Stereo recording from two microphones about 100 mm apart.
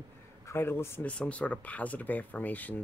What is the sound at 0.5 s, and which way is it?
Speech, 25° left (ahead or behind).